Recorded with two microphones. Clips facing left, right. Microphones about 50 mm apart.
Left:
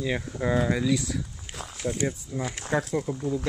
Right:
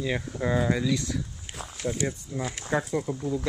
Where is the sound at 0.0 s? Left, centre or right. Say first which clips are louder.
Left 1 dB; centre.